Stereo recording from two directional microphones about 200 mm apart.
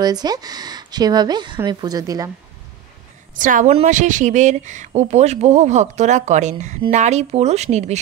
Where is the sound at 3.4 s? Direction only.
40° right (ahead or behind).